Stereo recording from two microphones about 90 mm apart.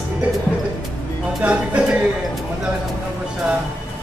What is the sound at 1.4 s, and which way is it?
Speech, 15° right (ahead or behind).